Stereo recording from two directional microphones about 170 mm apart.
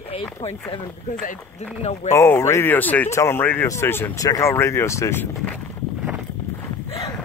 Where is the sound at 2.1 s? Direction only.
15° left (ahead or behind).